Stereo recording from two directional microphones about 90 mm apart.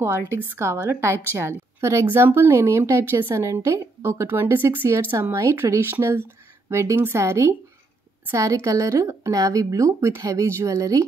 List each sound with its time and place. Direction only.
0.0 s speech: 25° right (ahead or behind)